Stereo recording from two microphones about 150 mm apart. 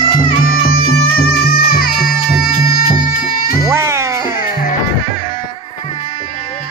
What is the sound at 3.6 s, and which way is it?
Music, 20° right (ahead or behind).